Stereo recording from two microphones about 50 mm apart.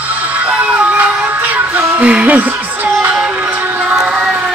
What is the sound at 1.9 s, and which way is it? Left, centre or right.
Music, right.